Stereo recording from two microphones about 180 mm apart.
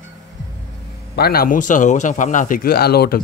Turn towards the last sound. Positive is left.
turn(degrees=60)  # may be behind; listen again after turning